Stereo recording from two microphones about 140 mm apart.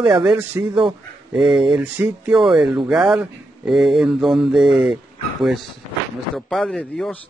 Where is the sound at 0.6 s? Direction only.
15° right (ahead or behind).